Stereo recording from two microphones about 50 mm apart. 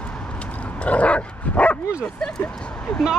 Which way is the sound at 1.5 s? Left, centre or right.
Left.